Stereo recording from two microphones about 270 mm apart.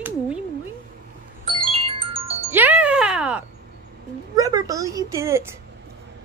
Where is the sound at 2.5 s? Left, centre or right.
Centre.